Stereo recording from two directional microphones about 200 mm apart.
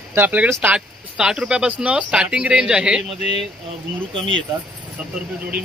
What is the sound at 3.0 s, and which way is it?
Speech, 35° left (ahead or behind).